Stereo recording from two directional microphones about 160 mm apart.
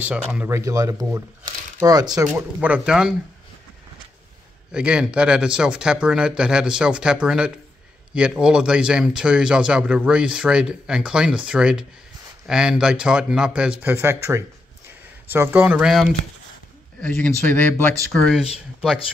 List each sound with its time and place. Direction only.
0.0 s speech: 5° right (ahead or behind)
0.5 s speech: 20° right (ahead or behind)
2.3 s speech: 10° right (ahead or behind)
4.7 s speech: 5° right (ahead or behind)